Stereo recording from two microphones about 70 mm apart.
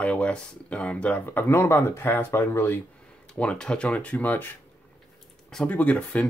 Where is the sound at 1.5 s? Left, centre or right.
Left.